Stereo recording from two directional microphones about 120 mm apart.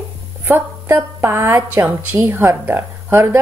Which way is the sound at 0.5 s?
20° right (ahead or behind).